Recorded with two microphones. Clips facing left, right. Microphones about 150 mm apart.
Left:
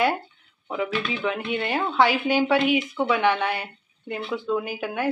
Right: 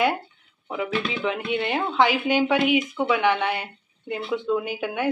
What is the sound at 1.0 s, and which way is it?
Speech, 20° right (ahead or behind).